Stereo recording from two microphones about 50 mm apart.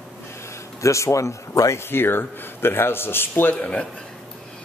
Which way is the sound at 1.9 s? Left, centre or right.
Left.